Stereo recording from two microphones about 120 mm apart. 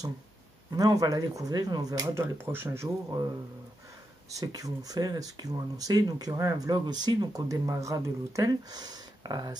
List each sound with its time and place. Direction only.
0.7 s speech: 30° right (ahead or behind)
2.5 s speech: 20° right (ahead or behind)
4.3 s speech: 30° right (ahead or behind)